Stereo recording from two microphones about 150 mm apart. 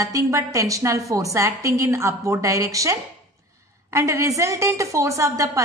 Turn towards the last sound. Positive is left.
turn(degrees=-20)  # may be behind; listen again after turning